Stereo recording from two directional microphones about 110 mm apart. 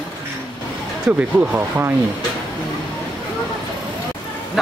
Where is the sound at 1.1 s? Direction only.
10° right (ahead or behind).